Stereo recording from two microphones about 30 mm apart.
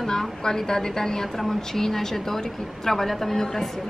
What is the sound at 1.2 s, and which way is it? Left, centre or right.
Speech, centre.